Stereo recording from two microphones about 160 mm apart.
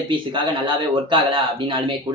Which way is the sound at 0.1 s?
30° right (ahead or behind).